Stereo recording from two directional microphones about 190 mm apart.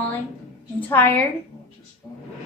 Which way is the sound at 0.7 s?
10° left (ahead or behind).